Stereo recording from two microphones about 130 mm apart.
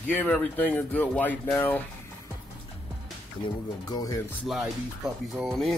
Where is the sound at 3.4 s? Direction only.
30° left (ahead or behind).